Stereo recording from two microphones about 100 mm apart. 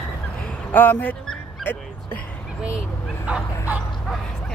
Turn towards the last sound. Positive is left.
turn(degrees=-15)  # may be behind; listen again after turning